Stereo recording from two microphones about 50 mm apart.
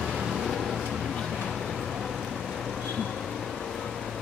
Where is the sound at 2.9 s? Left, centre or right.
Centre.